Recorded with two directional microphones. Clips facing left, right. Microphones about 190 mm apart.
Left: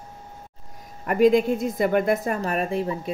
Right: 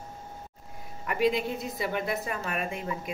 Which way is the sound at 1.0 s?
45° left (ahead or behind).